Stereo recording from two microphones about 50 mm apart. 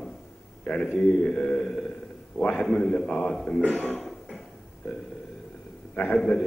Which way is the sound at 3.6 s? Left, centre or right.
Left.